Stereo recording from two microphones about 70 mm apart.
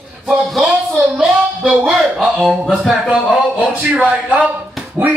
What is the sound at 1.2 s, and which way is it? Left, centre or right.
A man's voice, centre.